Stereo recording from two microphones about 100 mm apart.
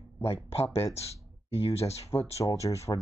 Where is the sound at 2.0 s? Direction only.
30° left (ahead or behind).